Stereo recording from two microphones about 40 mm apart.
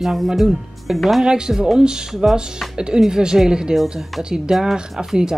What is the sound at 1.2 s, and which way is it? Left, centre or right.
A woman's voice, centre.